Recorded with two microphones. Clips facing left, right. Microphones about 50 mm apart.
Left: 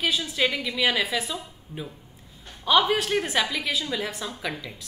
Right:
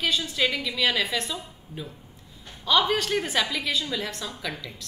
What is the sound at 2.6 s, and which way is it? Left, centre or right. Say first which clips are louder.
A woman's voice: left 2 dB; centre.